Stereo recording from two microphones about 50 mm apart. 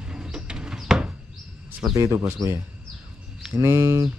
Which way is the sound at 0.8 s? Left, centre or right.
Centre.